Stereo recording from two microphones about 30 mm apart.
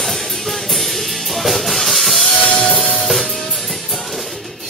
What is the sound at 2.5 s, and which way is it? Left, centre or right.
Music, left.